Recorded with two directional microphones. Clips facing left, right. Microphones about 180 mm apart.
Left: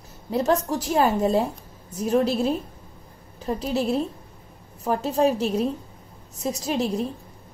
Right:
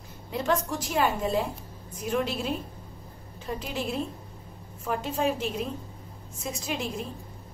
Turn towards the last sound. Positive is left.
turn(degrees=35)  # may be behind; listen again after turning